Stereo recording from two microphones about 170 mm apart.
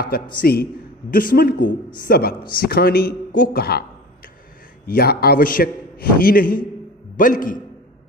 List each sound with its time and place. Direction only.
0.4 s speech: 65° left (ahead or behind)
4.8 s a man's voice: 65° left (ahead or behind)